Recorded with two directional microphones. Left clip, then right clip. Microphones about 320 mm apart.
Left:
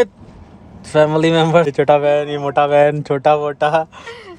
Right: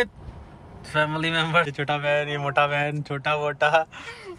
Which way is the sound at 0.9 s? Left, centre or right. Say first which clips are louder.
Left 11 dB; centre.